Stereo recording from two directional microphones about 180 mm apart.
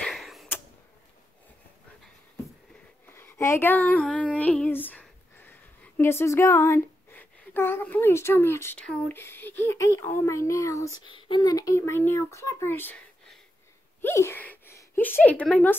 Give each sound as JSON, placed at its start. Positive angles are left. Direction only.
{"t": 0.0, "sound": "a sound", "side_deg": 0}
{"t": 3.1, "sound": "female singing", "side_deg": 15}
{"t": 11.1, "sound": "speech", "side_deg": 25}